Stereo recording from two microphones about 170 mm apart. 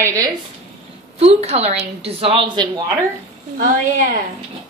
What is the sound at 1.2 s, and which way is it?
A child's voice, 40° right (ahead or behind).